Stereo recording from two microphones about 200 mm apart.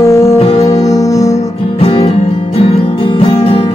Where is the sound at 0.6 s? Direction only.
15° left (ahead or behind).